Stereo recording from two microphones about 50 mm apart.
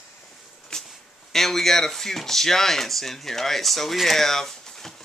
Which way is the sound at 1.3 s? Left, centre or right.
Centre.